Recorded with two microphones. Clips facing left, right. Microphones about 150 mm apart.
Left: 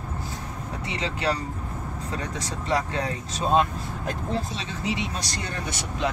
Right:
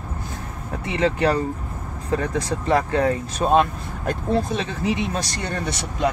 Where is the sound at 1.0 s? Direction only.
55° right (ahead or behind).